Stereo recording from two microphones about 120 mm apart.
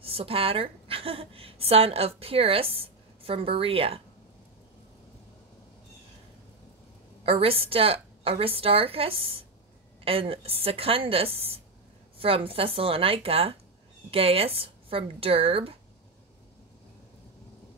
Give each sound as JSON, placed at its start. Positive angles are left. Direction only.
{"t": 0.0, "sound": "a woman's voice", "side_deg": -50}
{"t": 7.2, "sound": "a woman's voice", "side_deg": -50}